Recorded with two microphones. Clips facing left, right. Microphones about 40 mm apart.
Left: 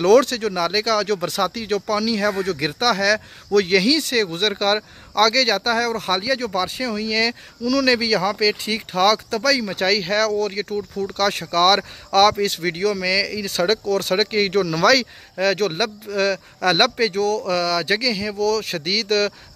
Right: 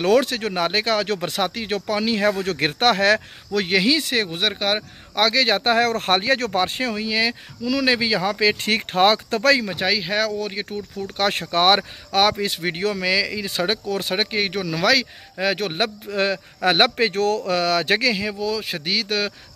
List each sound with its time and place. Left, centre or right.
0.0 s speech: right
3.5 s speech: centre; by 7.0 s right
7.0 s speech: centre
8.5 s speech: right
8.9 s speech: right
9.7 s speech: centre
12.1 s speech: centre
17.1 s speech: right
18.4 s speech: centre